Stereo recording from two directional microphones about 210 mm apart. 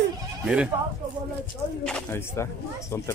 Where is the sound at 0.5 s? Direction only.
5° right (ahead or behind).